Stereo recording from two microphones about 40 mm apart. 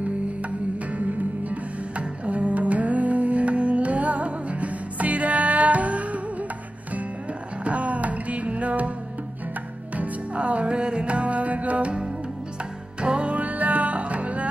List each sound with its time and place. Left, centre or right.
0.9 s music: right
7.6 s music: right
9.9 s music: right
13.0 s music: centre
13.3 s music: right